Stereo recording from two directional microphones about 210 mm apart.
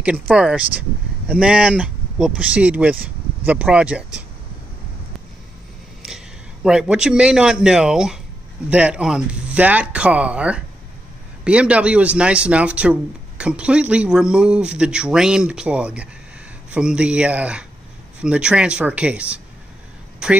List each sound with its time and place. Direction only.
0.0 s speech: 5° right (ahead or behind)
6.0 s a man's voice: centre (ahead or behind)